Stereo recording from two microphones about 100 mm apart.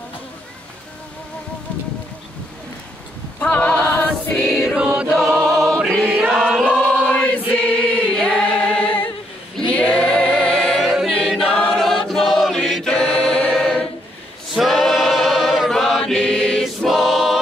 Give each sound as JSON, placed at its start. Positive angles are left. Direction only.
{"t": 3.3, "sound": "a sound", "side_deg": 15}
{"t": 4.5, "sound": "choir", "side_deg": 5}
{"t": 4.7, "sound": "choir", "side_deg": -10}
{"t": 5.1, "sound": "choir", "side_deg": 5}
{"t": 5.9, "sound": "choir", "side_deg": -15}
{"t": 6.3, "sound": "choir", "side_deg": -5}
{"t": 6.6, "sound": "choir", "side_deg": 10}
{"t": 14.5, "sound": "chant", "side_deg": 0}